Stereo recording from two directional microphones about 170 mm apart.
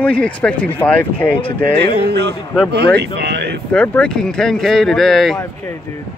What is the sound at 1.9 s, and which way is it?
Speech, 70° right (ahead or behind).